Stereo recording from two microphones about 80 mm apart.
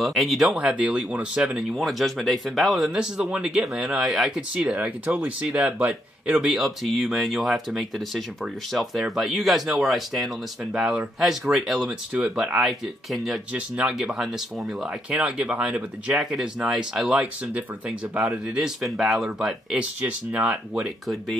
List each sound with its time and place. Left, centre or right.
0.0 s speech: centre
1.7 s speech: centre
4.8 s speech: centre
14.8 s speech: centre
16.2 s speech: centre
19.8 s speech: centre
20.4 s speech: centre